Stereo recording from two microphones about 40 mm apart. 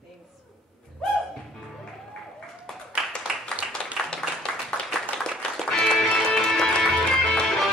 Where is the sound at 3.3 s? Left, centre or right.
Centre.